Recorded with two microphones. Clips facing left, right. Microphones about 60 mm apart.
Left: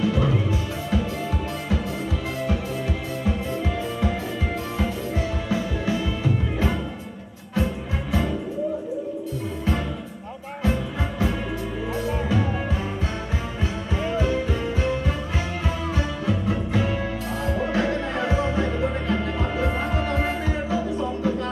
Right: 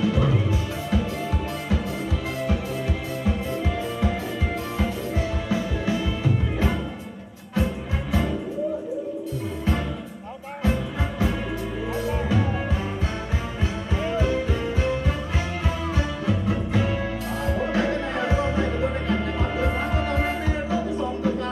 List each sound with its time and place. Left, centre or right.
0.0 s music: centre
3.3 s music: centre
10.6 s music: centre
13.9 s music: centre